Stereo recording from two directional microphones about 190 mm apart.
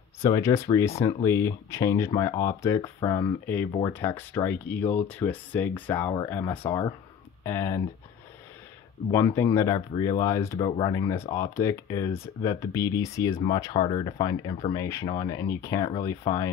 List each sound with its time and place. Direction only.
0.2 s speech: 15° left (ahead or behind)
9.1 s speech: 15° left (ahead or behind)